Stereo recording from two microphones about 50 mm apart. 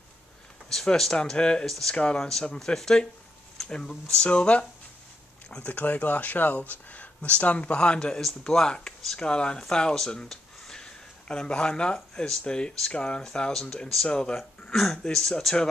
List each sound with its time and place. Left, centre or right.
0.7 s speech: centre
1.7 s speech: centre
8.2 s speech: centre
14.7 s speech: centre